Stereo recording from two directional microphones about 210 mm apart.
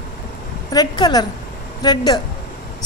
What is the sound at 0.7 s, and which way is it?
A woman's voice, 20° left (ahead or behind).